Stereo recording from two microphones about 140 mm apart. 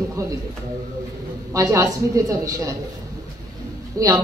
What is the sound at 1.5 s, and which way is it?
A woman's voice, 25° right (ahead or behind).